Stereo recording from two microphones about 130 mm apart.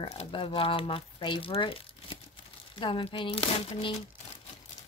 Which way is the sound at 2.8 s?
40° left (ahead or behind).